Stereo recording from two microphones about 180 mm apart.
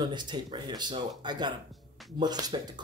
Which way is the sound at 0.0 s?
25° right (ahead or behind).